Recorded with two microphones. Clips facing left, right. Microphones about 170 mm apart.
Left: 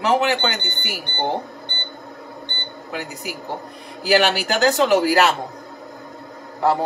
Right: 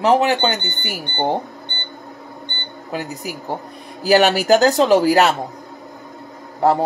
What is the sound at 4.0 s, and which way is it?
Speech, 40° right (ahead or behind).